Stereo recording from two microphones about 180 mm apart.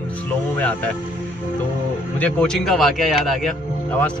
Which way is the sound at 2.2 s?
5° left (ahead or behind).